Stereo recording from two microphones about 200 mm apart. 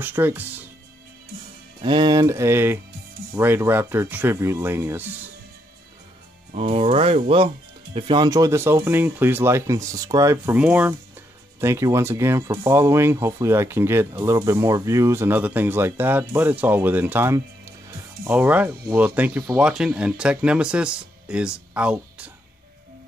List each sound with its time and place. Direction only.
0.0 s speech: 10° right (ahead or behind)
1.8 s speech: 20° right (ahead or behind)
6.5 s speech: 30° right (ahead or behind); by 22.3 s 5° right (ahead or behind)